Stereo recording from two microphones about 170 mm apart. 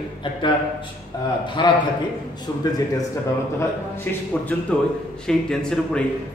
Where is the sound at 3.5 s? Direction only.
10° left (ahead or behind).